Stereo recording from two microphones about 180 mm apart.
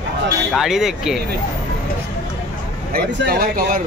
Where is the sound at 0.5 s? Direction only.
Centre (ahead or behind).